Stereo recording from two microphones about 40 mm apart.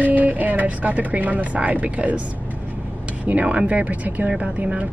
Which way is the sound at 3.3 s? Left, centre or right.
Right.